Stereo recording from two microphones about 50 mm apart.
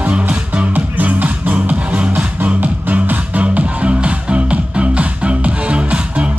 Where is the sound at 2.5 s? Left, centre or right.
Right.